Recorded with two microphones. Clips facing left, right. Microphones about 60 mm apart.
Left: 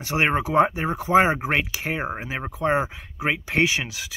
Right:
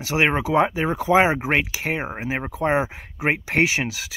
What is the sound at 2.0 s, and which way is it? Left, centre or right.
Speech, centre.